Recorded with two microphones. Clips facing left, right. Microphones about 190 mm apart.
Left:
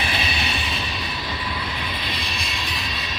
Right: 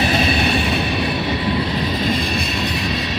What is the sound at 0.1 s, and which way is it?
Train, 45° right (ahead or behind).